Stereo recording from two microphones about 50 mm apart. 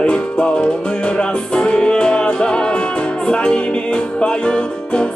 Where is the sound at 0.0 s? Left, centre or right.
Left.